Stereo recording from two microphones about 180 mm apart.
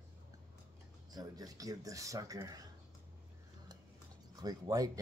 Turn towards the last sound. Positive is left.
turn(degrees=-20)  # may be behind; listen again after turning